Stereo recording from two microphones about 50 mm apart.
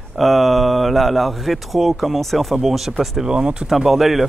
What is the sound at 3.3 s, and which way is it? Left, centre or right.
Speech, centre.